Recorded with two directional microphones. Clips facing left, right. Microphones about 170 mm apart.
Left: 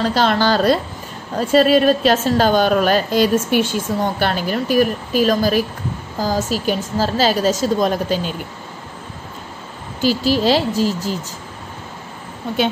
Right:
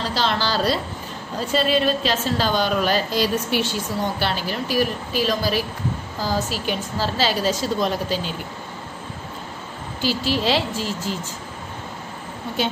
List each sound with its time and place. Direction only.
0.0 s a woman's voice: 50° left (ahead or behind)
10.0 s speech: 40° left (ahead or behind)